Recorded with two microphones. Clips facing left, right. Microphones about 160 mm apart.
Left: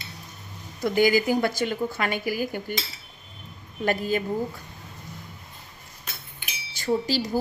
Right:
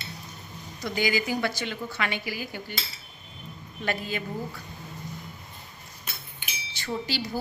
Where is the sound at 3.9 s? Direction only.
45° left (ahead or behind).